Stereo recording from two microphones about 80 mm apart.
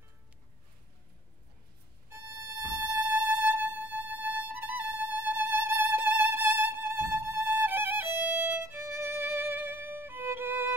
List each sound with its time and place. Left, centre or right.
2.0 s music: right
7.4 s violin: right